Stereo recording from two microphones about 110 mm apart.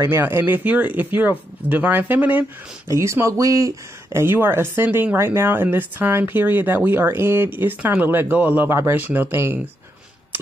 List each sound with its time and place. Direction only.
0.0 s speech: 20° right (ahead or behind)
2.9 s speech: 25° right (ahead or behind)